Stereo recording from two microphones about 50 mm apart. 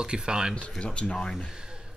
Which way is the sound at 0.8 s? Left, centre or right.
Left.